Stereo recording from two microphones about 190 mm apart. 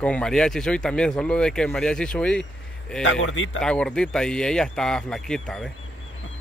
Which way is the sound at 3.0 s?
85° left.